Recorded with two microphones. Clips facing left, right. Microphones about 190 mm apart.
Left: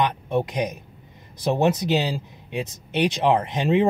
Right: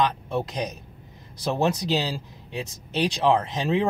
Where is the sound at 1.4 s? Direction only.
20° left (ahead or behind).